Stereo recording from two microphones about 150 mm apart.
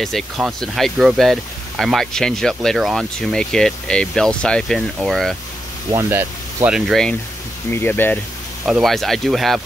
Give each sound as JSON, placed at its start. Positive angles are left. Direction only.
{"t": 0.0, "sound": "speech", "side_deg": 0}
{"t": 5.9, "sound": "speech", "side_deg": -15}
{"t": 6.9, "sound": "speech", "side_deg": 5}
{"t": 7.7, "sound": "speech", "side_deg": 15}
{"t": 8.6, "sound": "speech", "side_deg": 0}